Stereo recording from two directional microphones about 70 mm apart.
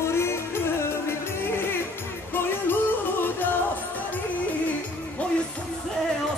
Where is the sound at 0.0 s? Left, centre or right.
Left.